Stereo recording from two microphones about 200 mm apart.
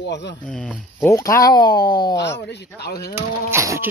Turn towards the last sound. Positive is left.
turn(degrees=-15)  # may be behind; listen again after turning